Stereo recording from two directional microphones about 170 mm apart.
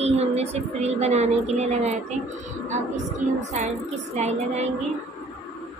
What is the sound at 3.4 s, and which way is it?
Music, 45° right (ahead or behind).